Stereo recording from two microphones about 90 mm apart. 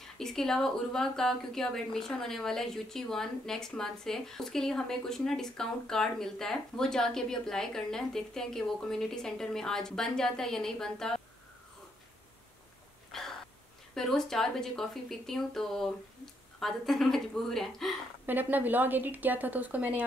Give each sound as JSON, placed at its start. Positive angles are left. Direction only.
{"t": 0.0, "sound": "speech", "side_deg": 5}
{"t": 13.1, "sound": "a sound", "side_deg": 5}
{"t": 13.9, "sound": "speech", "side_deg": 5}
{"t": 18.2, "sound": "a woman's voice", "side_deg": -20}